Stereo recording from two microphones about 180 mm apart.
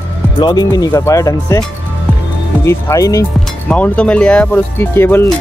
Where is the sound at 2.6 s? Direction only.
15° left (ahead or behind).